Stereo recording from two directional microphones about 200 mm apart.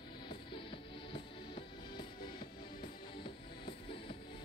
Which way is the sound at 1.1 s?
25° left (ahead or behind).